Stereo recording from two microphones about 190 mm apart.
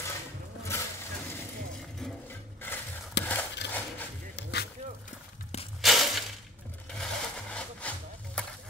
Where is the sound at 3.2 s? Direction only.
65° left (ahead or behind).